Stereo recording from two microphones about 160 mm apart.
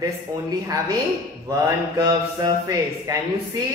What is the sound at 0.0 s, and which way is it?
A man's voice, 20° right (ahead or behind).